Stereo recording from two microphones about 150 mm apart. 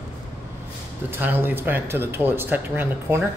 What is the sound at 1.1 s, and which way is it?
Speech, 15° right (ahead or behind).